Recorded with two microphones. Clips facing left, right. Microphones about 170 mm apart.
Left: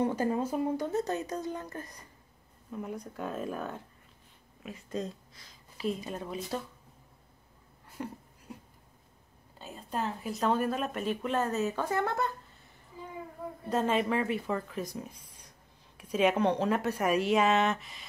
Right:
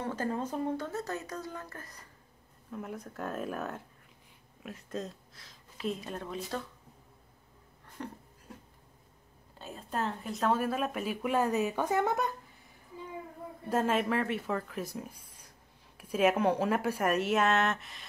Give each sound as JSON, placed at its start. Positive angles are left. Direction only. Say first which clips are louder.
{"t": 0.0, "sound": "speech", "louder": "left 5 dB", "side_deg": 15}
{"t": 2.7, "sound": "speech", "louder": "left 2 dB", "side_deg": 0}
{"t": 8.0, "sound": "a sound", "louder": "left 3 dB", "side_deg": 10}
{"t": 9.6, "sound": "speech", "louder": "even", "side_deg": 0}
{"t": 13.7, "sound": "speech", "louder": "even", "side_deg": -5}